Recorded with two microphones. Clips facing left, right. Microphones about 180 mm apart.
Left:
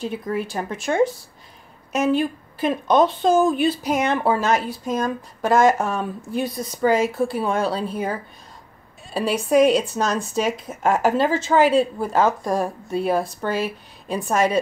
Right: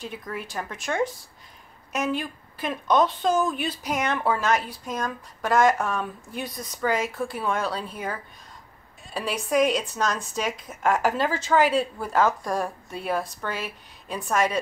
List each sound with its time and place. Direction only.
0.0 s a woman's voice: 30° left (ahead or behind)